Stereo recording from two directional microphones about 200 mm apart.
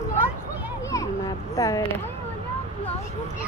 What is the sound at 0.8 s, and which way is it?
Speech, 15° left (ahead or behind).